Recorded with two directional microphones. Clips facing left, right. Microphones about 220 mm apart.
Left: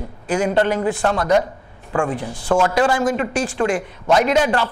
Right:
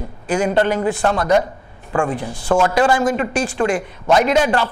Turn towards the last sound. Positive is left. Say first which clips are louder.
# right 1 dB
turn(degrees=-15)  # may be behind; listen again after turning